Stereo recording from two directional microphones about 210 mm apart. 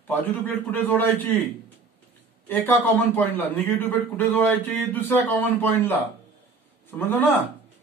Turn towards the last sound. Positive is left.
turn(degrees=10)  # may be behind; listen again after turning